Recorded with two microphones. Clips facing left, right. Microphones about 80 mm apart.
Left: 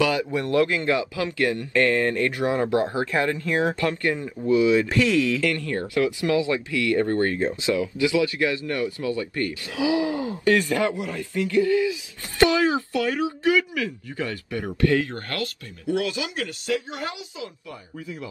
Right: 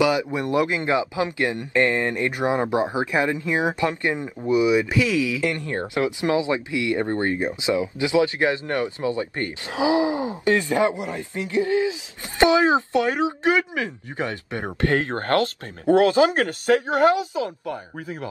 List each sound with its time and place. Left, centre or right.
0.0 s speech: centre
5.4 s speech: right